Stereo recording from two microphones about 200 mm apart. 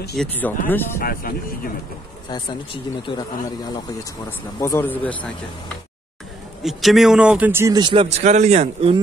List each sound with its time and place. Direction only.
0.2 s speech: 10° left (ahead or behind)
0.9 s speech: 45° left (ahead or behind)
2.2 s speech: 25° left (ahead or behind)
6.6 s speech: centre (ahead or behind); by 8.9 s 35° right (ahead or behind)